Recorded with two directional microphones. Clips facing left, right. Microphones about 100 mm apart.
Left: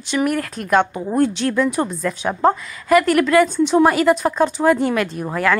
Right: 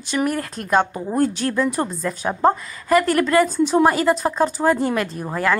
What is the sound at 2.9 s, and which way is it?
A woman's voice, 35° right (ahead or behind).